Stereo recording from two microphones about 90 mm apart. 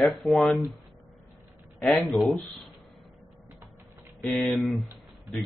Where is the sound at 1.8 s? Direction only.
Centre (ahead or behind).